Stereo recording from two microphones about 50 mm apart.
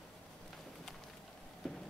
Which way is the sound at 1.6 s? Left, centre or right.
Centre.